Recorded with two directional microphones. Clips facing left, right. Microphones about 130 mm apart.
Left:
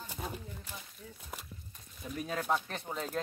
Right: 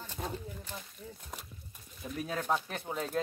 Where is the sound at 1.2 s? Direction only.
5° left (ahead or behind).